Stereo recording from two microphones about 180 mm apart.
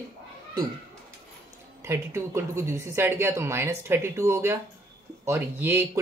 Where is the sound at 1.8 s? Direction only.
15° right (ahead or behind).